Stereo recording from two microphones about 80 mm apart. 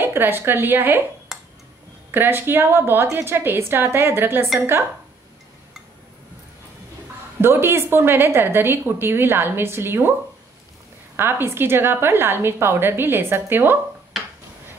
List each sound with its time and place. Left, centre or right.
0.0 s a woman's voice: right
1.3 s a sound: centre
2.0 s a woman's voice: right
7.4 s a woman's voice: right
11.1 s a woman's voice: right